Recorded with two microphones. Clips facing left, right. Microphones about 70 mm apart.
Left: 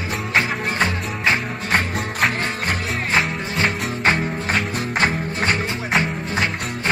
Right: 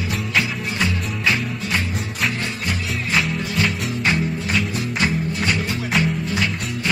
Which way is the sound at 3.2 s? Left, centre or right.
Left.